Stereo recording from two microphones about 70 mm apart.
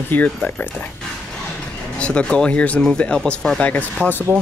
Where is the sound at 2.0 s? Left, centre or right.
Centre.